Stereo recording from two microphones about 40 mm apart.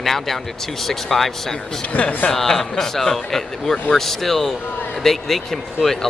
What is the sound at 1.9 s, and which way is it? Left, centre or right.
Speech, left.